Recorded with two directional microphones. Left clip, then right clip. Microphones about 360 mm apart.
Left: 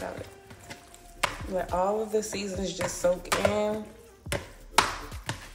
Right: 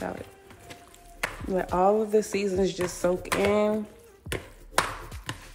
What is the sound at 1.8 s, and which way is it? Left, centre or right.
Speech, right.